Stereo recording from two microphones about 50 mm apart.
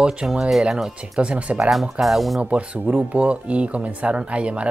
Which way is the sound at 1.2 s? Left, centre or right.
Right.